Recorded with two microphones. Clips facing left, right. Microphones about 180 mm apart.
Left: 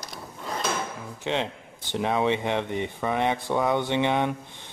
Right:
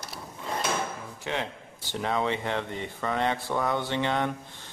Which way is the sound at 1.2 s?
20° left (ahead or behind).